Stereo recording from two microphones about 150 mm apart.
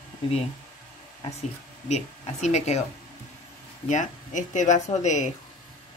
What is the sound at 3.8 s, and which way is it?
Speech, 55° left (ahead or behind).